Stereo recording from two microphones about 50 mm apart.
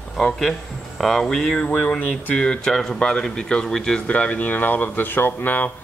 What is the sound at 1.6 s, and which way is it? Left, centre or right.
Speech, left.